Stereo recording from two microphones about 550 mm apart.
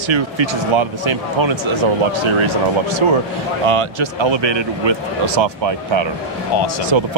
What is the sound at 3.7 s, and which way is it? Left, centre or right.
Speech, right.